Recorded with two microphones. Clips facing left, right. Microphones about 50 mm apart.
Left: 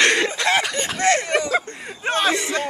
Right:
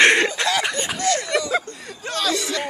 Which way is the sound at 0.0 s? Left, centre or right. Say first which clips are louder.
Right 2 dB; right.